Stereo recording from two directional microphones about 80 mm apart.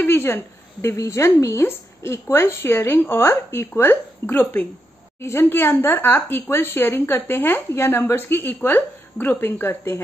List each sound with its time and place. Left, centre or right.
0.0 s a woman's voice: left